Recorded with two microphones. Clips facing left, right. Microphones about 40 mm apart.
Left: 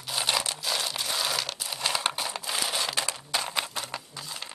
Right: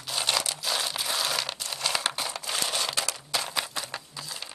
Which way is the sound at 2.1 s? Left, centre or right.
Centre.